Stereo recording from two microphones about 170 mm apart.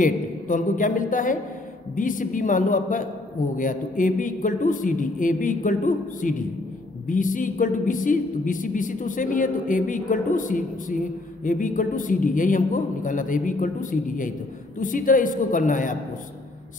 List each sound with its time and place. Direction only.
0.0 s speech: 50° left (ahead or behind)